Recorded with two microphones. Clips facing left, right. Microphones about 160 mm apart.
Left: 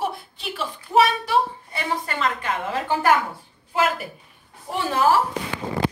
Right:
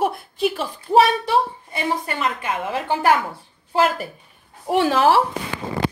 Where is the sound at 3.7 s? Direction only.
35° right (ahead or behind).